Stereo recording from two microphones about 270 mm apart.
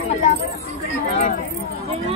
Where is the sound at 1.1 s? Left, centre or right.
Left.